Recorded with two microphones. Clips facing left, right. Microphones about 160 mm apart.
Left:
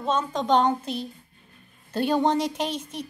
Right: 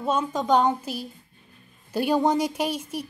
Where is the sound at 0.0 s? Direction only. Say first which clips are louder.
Right 1 dB; 10° right (ahead or behind).